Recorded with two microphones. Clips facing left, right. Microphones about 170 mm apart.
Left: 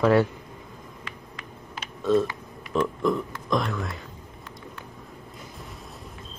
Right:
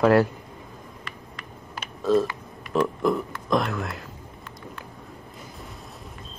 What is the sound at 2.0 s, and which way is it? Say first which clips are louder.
Mechanisms: right 1 dB; centre (ahead or behind).